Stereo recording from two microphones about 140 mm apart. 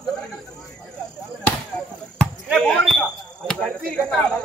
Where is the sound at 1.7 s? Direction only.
5° left (ahead or behind).